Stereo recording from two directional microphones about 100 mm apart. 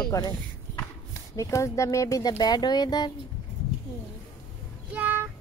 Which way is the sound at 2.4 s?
45° left (ahead or behind).